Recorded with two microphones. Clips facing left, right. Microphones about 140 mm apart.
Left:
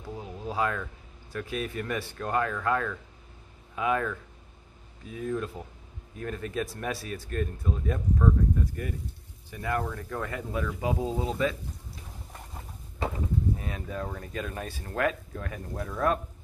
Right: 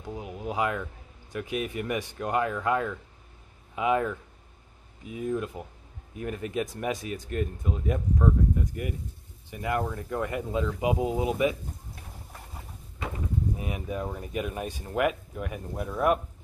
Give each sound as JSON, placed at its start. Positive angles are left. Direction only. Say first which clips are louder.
{"t": 0.0, "sound": "speech", "louder": "right 2 dB", "side_deg": -15}
{"t": 13.6, "sound": "speech", "louder": "right 2 dB", "side_deg": -15}